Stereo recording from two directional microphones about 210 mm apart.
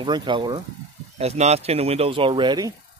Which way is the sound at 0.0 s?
20° right (ahead or behind).